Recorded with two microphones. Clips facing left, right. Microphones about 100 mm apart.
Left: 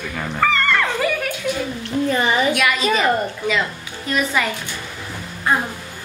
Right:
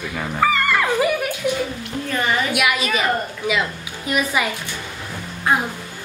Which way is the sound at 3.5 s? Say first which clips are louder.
Even; 10° right (ahead or behind).